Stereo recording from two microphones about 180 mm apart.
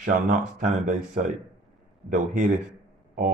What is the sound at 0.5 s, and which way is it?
Speech, 45° right (ahead or behind).